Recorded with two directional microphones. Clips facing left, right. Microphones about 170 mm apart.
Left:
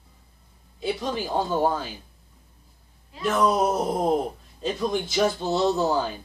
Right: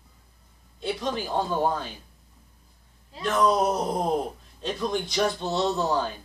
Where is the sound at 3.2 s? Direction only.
5° left (ahead or behind).